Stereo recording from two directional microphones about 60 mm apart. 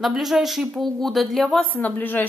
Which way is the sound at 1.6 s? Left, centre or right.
Left.